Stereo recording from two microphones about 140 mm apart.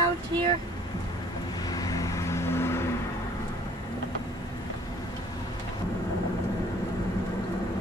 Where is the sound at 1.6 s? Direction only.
25° left (ahead or behind).